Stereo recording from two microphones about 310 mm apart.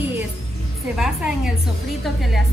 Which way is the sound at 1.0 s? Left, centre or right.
Centre.